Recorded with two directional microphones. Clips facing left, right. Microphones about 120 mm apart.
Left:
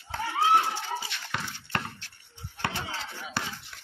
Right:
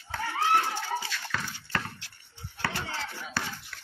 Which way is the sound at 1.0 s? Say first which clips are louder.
Right 1 dB; 20° left (ahead or behind).